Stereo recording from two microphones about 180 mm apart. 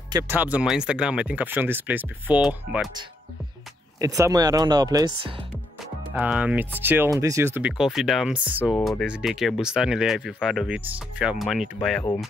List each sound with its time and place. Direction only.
0.1 s speech: 15° right (ahead or behind)
4.0 s speech: 20° right (ahead or behind)
6.1 s speech: 10° right (ahead or behind)
8.7 s speech: 5° left (ahead or behind)
9.0 s speech: 5° right (ahead or behind)